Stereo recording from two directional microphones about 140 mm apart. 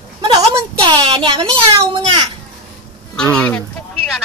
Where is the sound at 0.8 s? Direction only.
35° right (ahead or behind).